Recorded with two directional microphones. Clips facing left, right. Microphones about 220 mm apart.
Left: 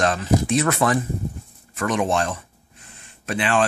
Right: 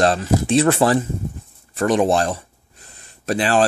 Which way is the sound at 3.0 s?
35° right (ahead or behind).